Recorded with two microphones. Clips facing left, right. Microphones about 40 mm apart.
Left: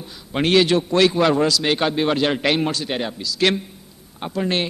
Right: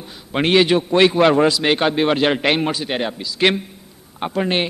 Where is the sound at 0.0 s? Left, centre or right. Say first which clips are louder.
Right 2 dB; centre.